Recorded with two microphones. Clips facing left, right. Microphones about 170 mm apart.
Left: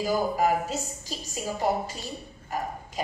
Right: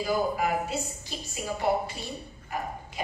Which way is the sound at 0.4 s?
40° left (ahead or behind).